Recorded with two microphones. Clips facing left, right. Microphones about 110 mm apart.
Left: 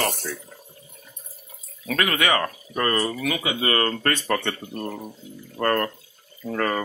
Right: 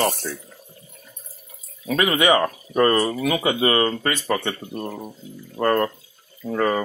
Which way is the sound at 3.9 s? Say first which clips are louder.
Right 1 dB; 10° right (ahead or behind).